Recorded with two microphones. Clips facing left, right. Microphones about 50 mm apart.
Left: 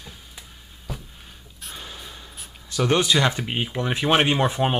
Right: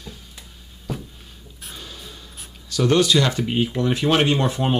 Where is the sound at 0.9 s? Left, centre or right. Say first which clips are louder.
Right 6 dB; centre.